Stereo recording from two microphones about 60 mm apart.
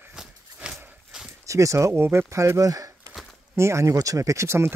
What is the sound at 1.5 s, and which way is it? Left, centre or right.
Speech, right.